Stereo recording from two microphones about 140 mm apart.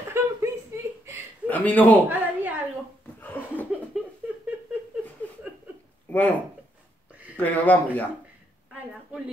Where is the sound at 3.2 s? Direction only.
10° left (ahead or behind).